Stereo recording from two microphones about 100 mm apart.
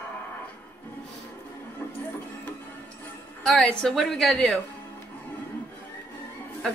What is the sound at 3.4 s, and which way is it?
A woman's voice, 5° left (ahead or behind).